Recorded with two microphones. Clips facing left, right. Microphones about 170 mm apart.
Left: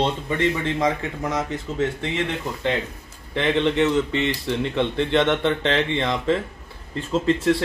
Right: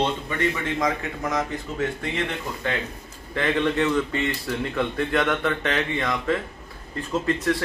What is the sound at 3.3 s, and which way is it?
Speech, 20° left (ahead or behind).